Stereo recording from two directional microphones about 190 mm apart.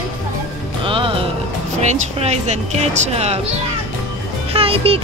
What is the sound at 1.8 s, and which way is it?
Speech, 35° right (ahead or behind).